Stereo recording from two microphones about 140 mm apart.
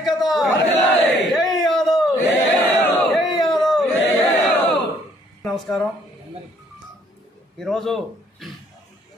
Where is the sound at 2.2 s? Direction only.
15° left (ahead or behind).